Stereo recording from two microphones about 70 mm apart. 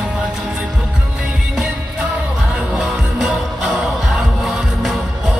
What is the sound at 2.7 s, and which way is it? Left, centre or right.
Music, centre.